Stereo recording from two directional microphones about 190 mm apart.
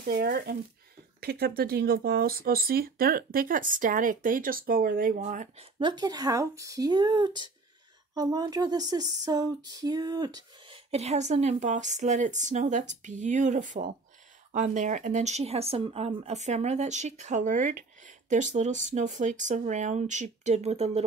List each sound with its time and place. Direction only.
0.0 s speech: 50° right (ahead or behind)
5.8 s speech: 20° right (ahead or behind)
10.9 s speech: 35° right (ahead or behind)